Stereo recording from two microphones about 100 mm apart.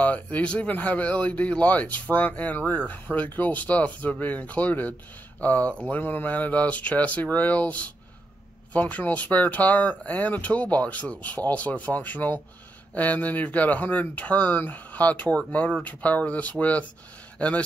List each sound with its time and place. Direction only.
0.0 s a man's voice: 15° left (ahead or behind)